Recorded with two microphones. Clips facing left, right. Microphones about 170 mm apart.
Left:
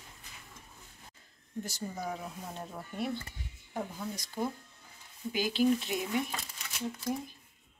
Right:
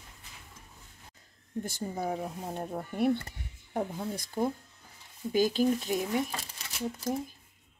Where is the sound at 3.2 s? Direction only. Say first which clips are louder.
Right 2 dB; 35° right (ahead or behind).